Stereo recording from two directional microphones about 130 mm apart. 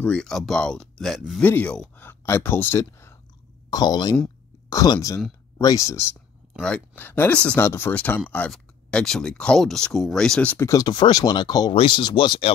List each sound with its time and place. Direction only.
0.0 s speech: 5° left (ahead or behind)
1.4 s speech: 15° left (ahead or behind)
3.7 s speech: 30° left (ahead or behind)
6.6 s speech: 10° left (ahead or behind)
8.5 s speech: 5° left (ahead or behind)
10.7 s speech: 30° left (ahead or behind)